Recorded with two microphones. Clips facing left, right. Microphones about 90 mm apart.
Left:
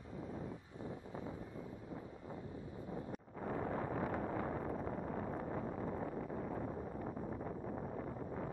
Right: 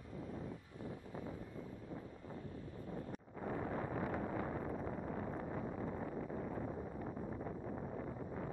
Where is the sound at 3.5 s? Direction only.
40° left (ahead or behind).